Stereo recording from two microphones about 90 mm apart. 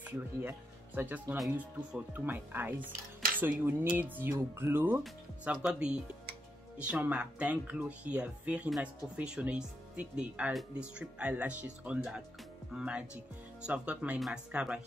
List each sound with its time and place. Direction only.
0.0 s speech: 20° right (ahead or behind)
5.4 s speech: 10° right (ahead or behind)